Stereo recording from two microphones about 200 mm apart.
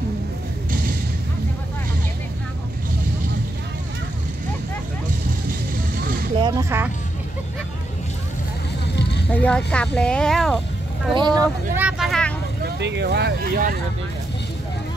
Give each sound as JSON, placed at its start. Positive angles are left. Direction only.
{"t": 6.4, "sound": "a sound", "side_deg": -15}
{"t": 9.3, "sound": "speech", "side_deg": 5}
{"t": 11.1, "sound": "speech", "side_deg": -20}
{"t": 11.7, "sound": "speech", "side_deg": -5}
{"t": 12.6, "sound": "speech", "side_deg": -60}